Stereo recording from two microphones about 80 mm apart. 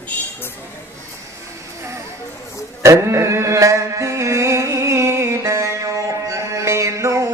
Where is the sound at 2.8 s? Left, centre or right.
Right.